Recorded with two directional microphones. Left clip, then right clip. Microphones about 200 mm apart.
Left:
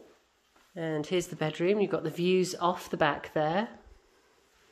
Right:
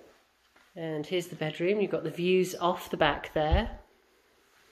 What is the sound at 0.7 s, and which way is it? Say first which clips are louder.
Speech: left 1 dB; 25° left (ahead or behind).